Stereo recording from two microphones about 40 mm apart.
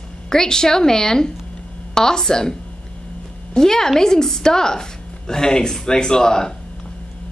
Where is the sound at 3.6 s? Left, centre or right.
Centre.